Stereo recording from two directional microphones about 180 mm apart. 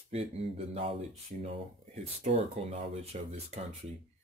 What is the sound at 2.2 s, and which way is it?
Speech, 35° right (ahead or behind).